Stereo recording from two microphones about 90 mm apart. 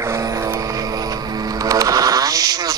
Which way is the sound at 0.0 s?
35° right (ahead or behind).